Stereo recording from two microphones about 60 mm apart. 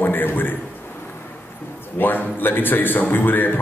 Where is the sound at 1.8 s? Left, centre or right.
Left.